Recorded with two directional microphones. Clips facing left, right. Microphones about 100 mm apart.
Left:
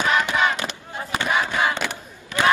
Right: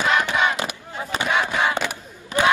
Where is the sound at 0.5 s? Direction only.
15° right (ahead or behind).